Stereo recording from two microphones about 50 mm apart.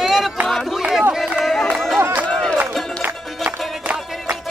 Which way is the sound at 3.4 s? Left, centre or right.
Right.